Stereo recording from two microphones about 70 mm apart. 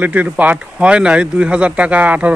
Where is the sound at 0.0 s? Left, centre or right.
Right.